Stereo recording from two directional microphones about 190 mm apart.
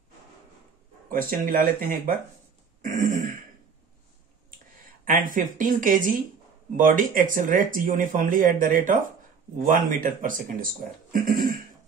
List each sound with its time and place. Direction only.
1.4 s speech: 50° right (ahead or behind)
2.8 s a sound: 45° right (ahead or behind)
5.0 s speech: 45° right (ahead or behind)